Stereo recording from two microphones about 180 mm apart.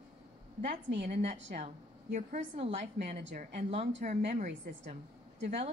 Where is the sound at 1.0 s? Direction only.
40° right (ahead or behind).